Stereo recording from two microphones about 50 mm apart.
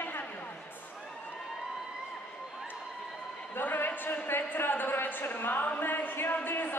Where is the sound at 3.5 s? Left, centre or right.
Left.